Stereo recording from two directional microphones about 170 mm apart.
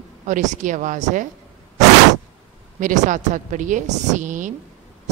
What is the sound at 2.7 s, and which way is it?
A woman's voice, 50° right (ahead or behind).